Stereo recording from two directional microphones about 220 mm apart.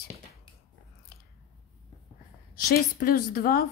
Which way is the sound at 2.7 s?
40° left (ahead or behind).